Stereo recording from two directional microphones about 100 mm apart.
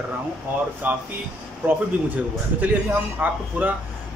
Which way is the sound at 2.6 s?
15° right (ahead or behind).